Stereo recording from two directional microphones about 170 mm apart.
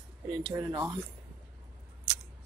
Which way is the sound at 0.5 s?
15° right (ahead or behind).